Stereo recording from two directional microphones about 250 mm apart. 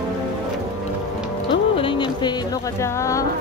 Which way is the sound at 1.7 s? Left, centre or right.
Left.